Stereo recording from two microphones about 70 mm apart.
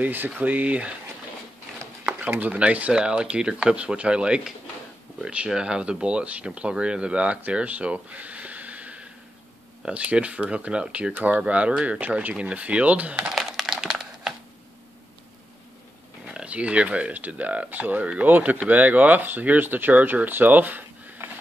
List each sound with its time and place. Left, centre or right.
0.0 s speech: right
2.0 s speech: right
13.3 s crumpling: centre
16.3 s speech: centre